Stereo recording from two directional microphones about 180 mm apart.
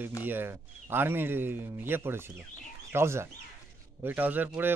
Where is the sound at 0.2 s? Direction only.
10° right (ahead or behind).